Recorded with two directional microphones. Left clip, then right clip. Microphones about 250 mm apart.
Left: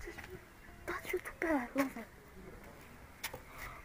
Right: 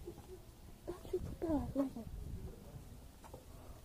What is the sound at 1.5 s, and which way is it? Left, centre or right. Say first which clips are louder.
Speech: left 3 dB; centre.